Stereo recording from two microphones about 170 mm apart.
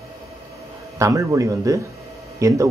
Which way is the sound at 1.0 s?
20° right (ahead or behind).